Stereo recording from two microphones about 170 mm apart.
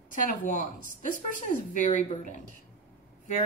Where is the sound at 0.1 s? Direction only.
50° left (ahead or behind).